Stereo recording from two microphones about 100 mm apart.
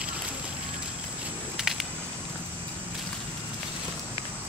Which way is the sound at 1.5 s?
5° right (ahead or behind).